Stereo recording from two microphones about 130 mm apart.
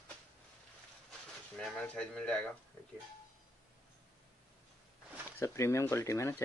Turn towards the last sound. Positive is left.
turn(degrees=20)  # may be behind; listen again after turning